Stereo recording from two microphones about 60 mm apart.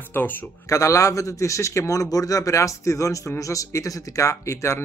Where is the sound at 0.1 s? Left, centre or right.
Left.